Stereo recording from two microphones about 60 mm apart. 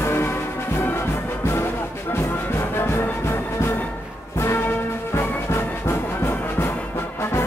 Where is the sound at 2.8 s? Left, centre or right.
Left.